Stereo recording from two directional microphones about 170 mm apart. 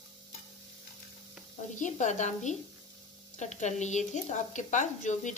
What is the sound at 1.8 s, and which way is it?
A woman's voice, 45° left (ahead or behind).